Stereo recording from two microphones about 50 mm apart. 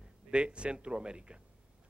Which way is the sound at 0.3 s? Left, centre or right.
Right.